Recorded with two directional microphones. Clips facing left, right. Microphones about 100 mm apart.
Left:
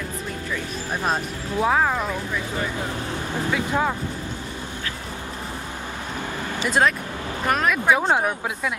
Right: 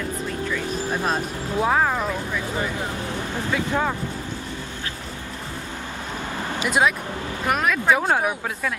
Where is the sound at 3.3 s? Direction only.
15° left (ahead or behind).